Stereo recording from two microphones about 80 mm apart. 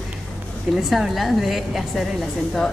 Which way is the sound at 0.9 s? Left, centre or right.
Centre.